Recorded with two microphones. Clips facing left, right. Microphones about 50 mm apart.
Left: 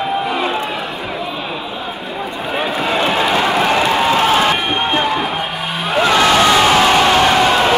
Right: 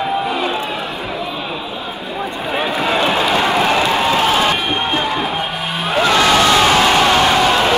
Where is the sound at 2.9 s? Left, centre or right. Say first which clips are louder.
Even; centre.